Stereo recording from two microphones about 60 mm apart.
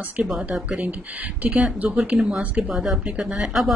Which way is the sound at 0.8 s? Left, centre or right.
Right.